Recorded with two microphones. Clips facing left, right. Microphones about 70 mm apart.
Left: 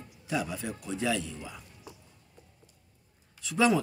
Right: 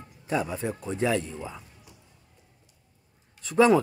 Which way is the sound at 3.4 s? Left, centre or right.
Right.